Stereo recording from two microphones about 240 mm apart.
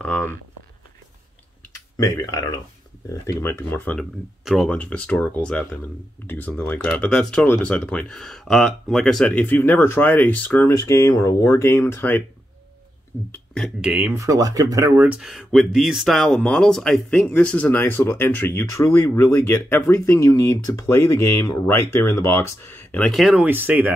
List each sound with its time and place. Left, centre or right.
0.0 s a sound: centre
2.0 s speech: centre
13.3 s speech: centre